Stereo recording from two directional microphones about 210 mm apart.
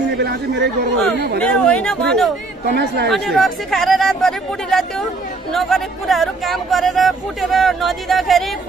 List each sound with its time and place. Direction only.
0.2 s speech: 50° right (ahead or behind)
1.4 s speech: 5° left (ahead or behind)
2.7 s speech: 50° right (ahead or behind)
3.1 s speech: centre (ahead or behind)